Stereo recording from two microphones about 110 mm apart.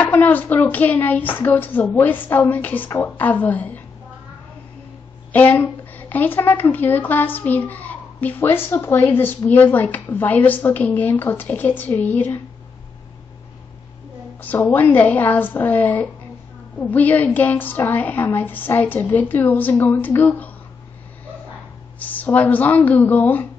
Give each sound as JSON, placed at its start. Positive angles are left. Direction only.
{"t": 0.0, "sound": "a woman's voice", "side_deg": 15}
{"t": 5.3, "sound": "a woman's voice", "side_deg": 15}
{"t": 14.4, "sound": "a woman's voice", "side_deg": 15}
{"t": 22.0, "sound": "a woman's voice", "side_deg": 15}